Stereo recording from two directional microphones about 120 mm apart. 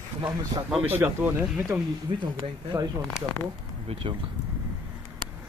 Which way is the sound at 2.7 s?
25° right (ahead or behind).